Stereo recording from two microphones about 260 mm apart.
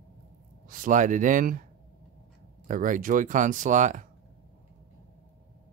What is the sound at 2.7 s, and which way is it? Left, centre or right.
Speech, right.